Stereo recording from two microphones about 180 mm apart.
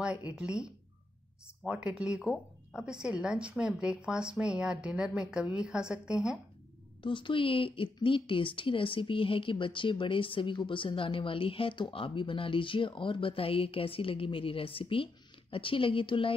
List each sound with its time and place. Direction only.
0.0 s speech: 5° right (ahead or behind)
7.0 s speech: 25° left (ahead or behind)